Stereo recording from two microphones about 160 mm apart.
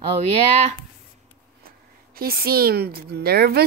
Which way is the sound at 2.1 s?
70° right (ahead or behind).